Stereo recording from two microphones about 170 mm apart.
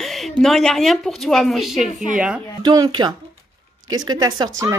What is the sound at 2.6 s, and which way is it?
A woman's voice, 25° right (ahead or behind).